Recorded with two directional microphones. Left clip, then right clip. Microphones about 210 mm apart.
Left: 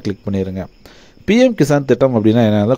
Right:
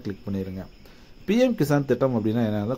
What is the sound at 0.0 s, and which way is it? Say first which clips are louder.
Speech: left 11 dB; 35° left (ahead or behind).